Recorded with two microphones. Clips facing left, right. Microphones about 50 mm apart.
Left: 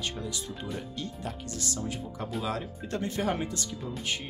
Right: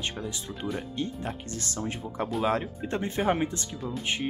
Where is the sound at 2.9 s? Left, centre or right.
Right.